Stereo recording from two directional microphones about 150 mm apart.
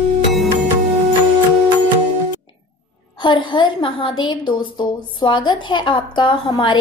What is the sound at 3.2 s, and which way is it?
A woman's voice, 30° left (ahead or behind).